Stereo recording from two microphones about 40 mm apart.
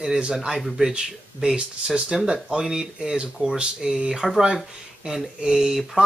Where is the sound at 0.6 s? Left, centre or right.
Centre.